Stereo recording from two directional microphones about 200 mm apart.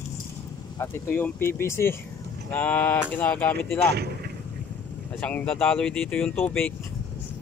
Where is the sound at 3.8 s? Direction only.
55° right (ahead or behind).